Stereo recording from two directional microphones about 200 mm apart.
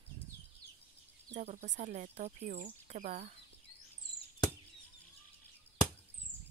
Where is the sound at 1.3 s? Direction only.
35° right (ahead or behind).